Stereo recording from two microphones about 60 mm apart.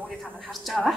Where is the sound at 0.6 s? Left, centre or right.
Centre.